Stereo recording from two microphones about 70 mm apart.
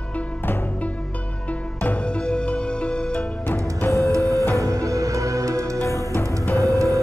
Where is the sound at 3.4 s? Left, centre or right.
Left.